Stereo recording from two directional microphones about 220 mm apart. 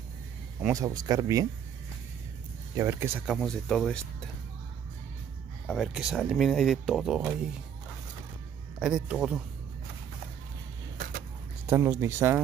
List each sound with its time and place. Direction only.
0.6 s speech: 10° right (ahead or behind)
2.7 s speech: 10° right (ahead or behind)
5.7 s speech: centre (ahead or behind)
8.7 s speech: 5° right (ahead or behind)
11.6 s speech: 10° right (ahead or behind)